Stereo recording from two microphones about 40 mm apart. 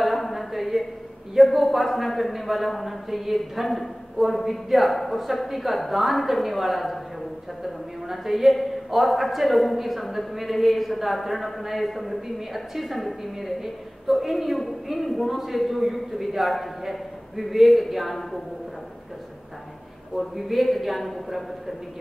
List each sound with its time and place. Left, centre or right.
0.0 s a sound: centre
1.3 s a woman's voice: centre
20.2 s a woman's voice: centre